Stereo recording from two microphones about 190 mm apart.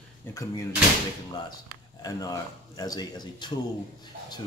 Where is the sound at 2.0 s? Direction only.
20° left (ahead or behind).